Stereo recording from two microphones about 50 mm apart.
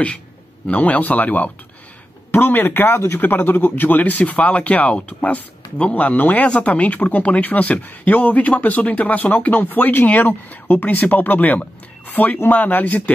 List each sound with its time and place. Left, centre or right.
0.7 s speech: left
3.2 s speech: left